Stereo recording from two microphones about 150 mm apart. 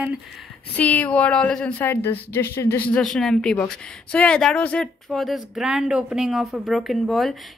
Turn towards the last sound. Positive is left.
turn(degrees=0)  # may be behind; listen again after turning